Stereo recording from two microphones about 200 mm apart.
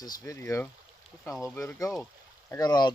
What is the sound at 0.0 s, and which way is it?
Speech, 15° left (ahead or behind).